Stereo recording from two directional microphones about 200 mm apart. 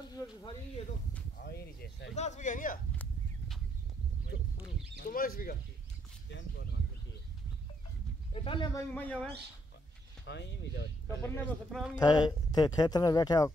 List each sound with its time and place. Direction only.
1.4 s speech: 50° left (ahead or behind)
2.1 s speech: 35° left (ahead or behind)
4.9 s speech: 45° left (ahead or behind)
8.3 s speech: 25° left (ahead or behind)
8.9 s speech: 10° left (ahead or behind)
10.2 s speech: 60° left (ahead or behind)
11.1 s speech: 10° left (ahead or behind)
12.0 s speech: 20° left (ahead or behind)